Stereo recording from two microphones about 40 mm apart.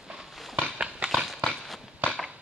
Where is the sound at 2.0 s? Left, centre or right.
Right.